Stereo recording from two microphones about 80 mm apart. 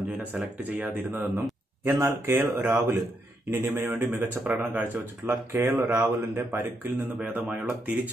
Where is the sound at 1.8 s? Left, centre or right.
Right.